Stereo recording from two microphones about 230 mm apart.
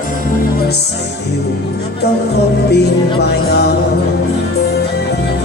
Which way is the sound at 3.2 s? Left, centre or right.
Left.